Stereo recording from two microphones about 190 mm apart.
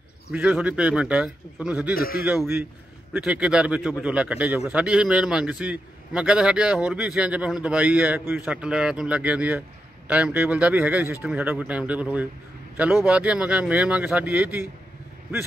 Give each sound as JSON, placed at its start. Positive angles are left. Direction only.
{"t": 0.3, "sound": "a man's voice", "side_deg": -5}
{"t": 2.0, "sound": "a man's voice", "side_deg": 50}
{"t": 2.2, "sound": "a man's voice", "side_deg": -10}